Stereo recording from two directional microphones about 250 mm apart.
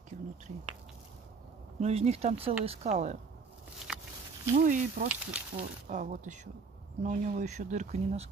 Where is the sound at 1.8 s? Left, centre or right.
Right.